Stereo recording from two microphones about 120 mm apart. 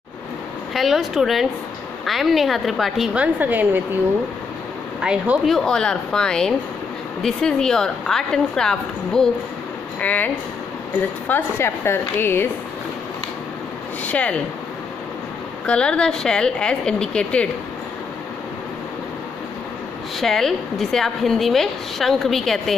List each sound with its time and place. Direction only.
0.7 s a woman's voice: centre (ahead or behind)
3.2 s a woman's voice: 15° right (ahead or behind)
5.0 s a woman's voice: 10° right (ahead or behind)
5.5 s a woman's voice: 5° left (ahead or behind)
14.0 s speech: 10° left (ahead or behind)
15.6 s a woman's voice: 10° left (ahead or behind)
20.2 s a woman's voice: centre (ahead or behind)